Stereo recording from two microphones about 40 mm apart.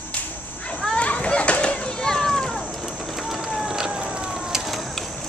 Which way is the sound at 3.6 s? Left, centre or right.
Centre.